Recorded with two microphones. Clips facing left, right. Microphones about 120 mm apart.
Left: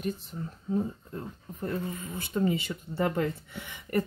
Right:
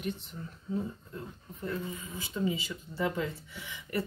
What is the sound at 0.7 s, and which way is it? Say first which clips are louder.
Speech: left 5 dB; 45° left (ahead or behind).